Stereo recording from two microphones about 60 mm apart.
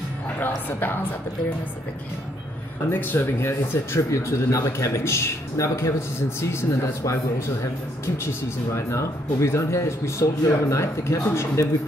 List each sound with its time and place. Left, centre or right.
0.7 s a woman's voice: left
2.9 s a woman's voice: left
3.2 s a man's voice: left
8.7 s speech: left